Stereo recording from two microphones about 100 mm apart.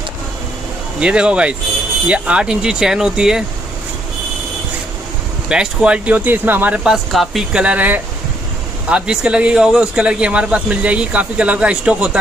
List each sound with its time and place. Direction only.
0.9 s speech: 10° right (ahead or behind)
5.5 s speech: 10° right (ahead or behind)
7.6 s speech: 15° right (ahead or behind)